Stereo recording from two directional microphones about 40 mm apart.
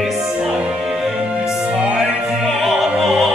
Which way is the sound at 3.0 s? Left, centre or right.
Right.